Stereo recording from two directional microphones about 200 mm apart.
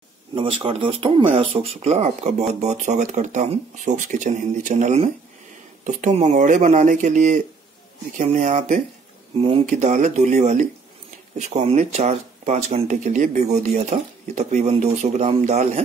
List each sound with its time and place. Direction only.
0.3 s speech: 25° right (ahead or behind)